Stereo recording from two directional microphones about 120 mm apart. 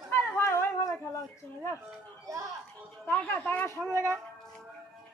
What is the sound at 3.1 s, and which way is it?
Speech, 15° left (ahead or behind).